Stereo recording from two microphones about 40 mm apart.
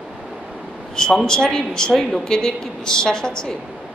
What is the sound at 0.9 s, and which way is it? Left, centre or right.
A woman's voice, centre.